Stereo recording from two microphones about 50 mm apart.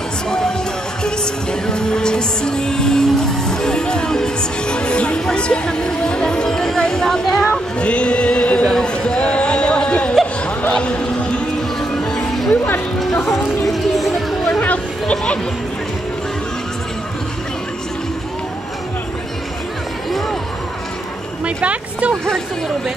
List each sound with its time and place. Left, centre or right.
0.3 s music: centre
7.8 s music: left
8.7 s a sound: centre
10.7 s run: left
13.7 s music: centre
14.6 s chatter: left
20.1 s music: centre
21.5 s a sound: right